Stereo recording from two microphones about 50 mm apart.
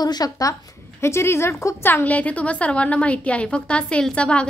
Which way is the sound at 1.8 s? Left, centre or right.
Left.